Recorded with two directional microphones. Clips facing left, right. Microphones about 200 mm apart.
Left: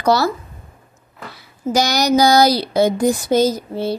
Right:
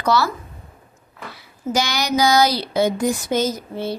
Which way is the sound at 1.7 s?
40° left (ahead or behind).